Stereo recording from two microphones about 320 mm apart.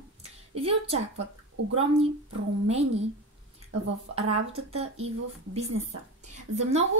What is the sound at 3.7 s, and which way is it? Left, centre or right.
Speech, right.